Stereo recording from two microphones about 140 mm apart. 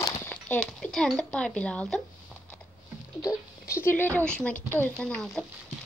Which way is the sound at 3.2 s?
25° left (ahead or behind).